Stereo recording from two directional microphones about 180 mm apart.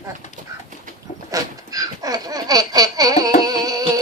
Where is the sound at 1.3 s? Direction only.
20° right (ahead or behind).